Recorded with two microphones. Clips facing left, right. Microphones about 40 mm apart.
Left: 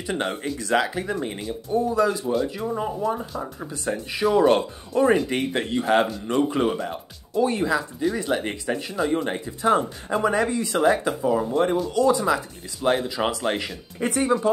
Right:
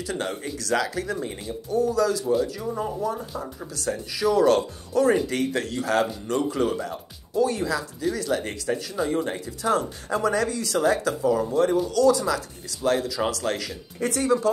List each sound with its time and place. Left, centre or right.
0.0 s speech: left